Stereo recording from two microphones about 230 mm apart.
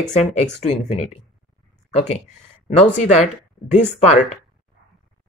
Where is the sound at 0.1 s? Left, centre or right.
Left.